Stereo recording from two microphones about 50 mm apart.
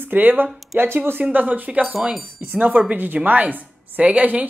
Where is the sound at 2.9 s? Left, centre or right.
Right.